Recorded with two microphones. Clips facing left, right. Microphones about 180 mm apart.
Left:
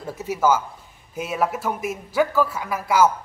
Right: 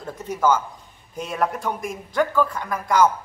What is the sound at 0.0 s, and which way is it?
A man's voice, 10° left (ahead or behind).